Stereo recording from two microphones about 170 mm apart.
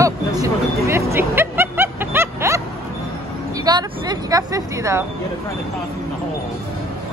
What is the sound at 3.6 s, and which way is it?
A woman's voice, 25° right (ahead or behind).